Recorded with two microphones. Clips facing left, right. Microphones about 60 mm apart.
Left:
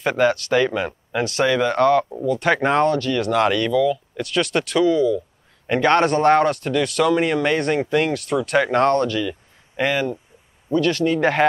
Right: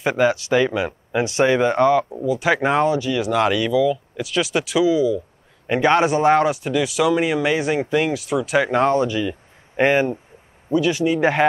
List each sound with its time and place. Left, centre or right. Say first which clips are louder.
0.0 s speech: even; centre
1.2 s speech: right 2 dB; centre
2.0 s speech: even; centre; by 10.1 s right
10.7 s speech: even; centre